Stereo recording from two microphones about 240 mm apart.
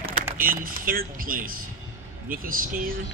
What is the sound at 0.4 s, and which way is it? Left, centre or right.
Speech, right.